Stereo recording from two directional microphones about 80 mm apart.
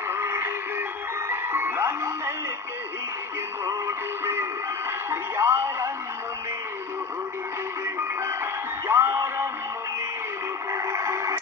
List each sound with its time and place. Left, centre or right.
0.1 s music: right
3.8 s synthetic singing: right
5.1 s speech: right
8.8 s music: right
10.7 s music: right